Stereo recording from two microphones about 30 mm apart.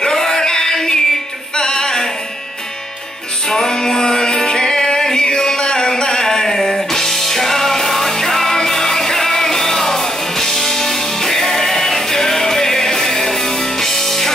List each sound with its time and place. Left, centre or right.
0.0 s music: centre
3.4 s music: centre
6.2 s music: centre